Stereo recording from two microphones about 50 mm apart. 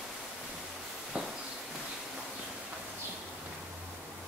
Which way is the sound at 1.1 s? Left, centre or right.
Right.